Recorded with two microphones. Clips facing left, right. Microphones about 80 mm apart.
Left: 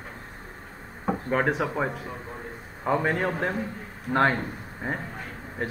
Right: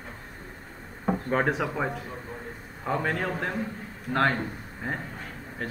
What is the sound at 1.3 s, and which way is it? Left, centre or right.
Speech, centre.